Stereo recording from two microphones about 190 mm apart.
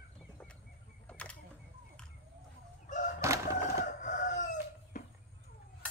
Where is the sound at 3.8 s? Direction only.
40° left (ahead or behind).